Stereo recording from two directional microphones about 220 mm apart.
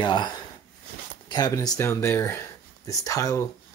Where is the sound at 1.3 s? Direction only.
15° left (ahead or behind).